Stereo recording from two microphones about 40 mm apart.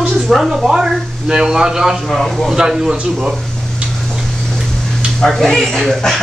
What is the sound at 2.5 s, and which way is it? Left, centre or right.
Speech, centre.